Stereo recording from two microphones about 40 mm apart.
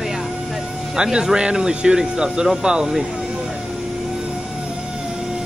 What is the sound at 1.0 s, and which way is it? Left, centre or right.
Speech, centre.